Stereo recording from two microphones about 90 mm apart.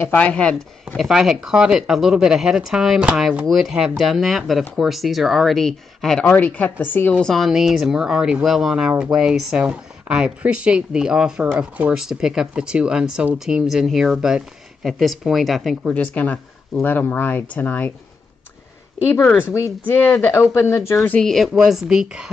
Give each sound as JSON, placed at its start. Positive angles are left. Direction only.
{"t": 0.1, "sound": "speech", "side_deg": 15}
{"t": 1.0, "sound": "speech", "side_deg": -5}
{"t": 7.2, "sound": "speech", "side_deg": 5}
{"t": 15.9, "sound": "speech", "side_deg": 15}
{"t": 19.9, "sound": "speech", "side_deg": 20}
{"t": 21.2, "sound": "speech", "side_deg": 0}